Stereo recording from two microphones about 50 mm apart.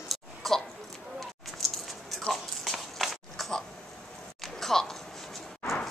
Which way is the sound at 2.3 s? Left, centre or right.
Centre.